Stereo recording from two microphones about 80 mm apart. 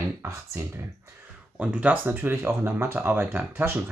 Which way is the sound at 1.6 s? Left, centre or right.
Centre.